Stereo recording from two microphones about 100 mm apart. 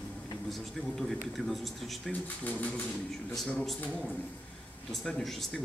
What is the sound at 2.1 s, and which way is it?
Speech, 15° left (ahead or behind).